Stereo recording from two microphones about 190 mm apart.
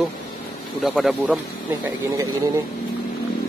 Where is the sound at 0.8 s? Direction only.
Centre (ahead or behind).